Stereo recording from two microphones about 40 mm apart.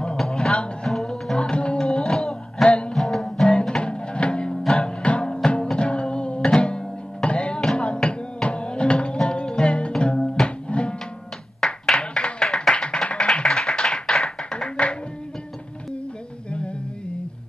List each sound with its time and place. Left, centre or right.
0.2 s music: centre
1.8 s music: centre
3.4 s music: left
11.6 s a sound: centre
12.1 s clapping: left
14.0 s tap: centre
14.5 s music: left
16.4 s music: left